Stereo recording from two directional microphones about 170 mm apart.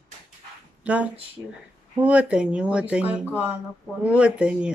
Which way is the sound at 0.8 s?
10° right (ahead or behind).